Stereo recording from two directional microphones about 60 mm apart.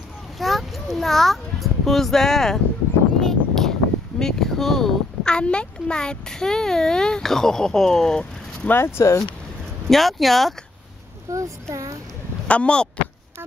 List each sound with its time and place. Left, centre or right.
0.4 s a child's voice: centre
3.2 s a sound: centre
4.2 s speech: centre
8.6 s speech: left
9.8 s speech: centre
11.3 s a child's voice: right
12.4 s speech: centre